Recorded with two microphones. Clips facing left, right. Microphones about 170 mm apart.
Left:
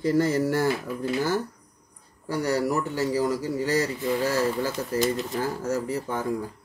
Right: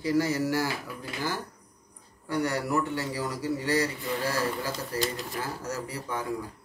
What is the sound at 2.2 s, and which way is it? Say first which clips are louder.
A man's voice: left 4 dB; 40° left (ahead or behind).